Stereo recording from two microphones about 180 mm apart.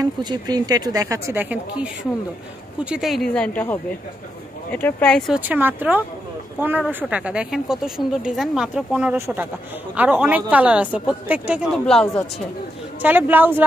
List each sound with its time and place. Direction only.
0.0 s a woman's voice: 20° right (ahead or behind); by 5.4 s 5° left (ahead or behind)
5.4 s speech: 10° right (ahead or behind)
11.7 s speech: 5° left (ahead or behind)
13.0 s speech: 10° right (ahead or behind)